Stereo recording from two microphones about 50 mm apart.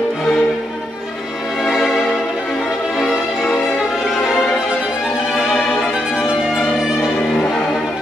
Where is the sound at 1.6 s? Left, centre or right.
Centre.